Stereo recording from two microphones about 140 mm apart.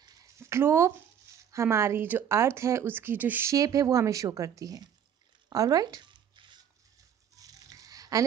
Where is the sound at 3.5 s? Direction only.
25° right (ahead or behind).